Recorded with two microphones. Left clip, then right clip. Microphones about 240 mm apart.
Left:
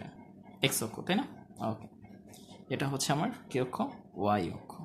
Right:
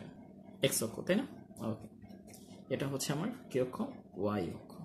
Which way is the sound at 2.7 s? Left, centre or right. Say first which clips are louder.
Left 4 dB; centre.